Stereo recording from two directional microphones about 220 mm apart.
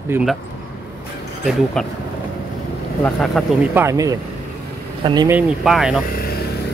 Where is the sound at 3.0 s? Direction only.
Centre (ahead or behind).